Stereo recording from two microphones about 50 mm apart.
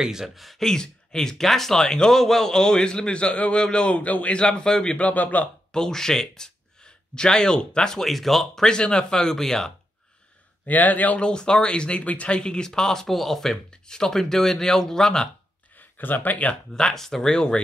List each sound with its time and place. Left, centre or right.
0.0 s speech: centre
0.6 s a man's voice: centre
4.9 s speech: left
5.7 s speech: centre
8.6 s speech: centre
10.6 s speech: left
11.1 s speech: centre
16.0 s speech: left
16.7 s speech: centre
17.3 s speech: centre